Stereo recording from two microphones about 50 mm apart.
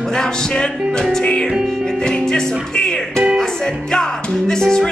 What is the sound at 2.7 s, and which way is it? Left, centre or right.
Speech, centre.